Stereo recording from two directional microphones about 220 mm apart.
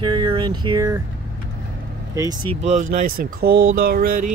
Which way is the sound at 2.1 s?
20° right (ahead or behind).